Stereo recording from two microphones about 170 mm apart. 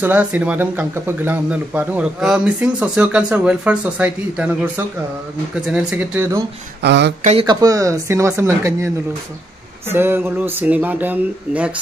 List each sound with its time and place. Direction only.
0.0 s speech: 10° right (ahead or behind)
6.8 s speech: 90° right
7.4 s speech: 20° right (ahead or behind)